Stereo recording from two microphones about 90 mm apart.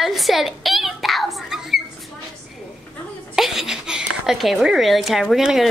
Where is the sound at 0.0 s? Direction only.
Centre (ahead or behind).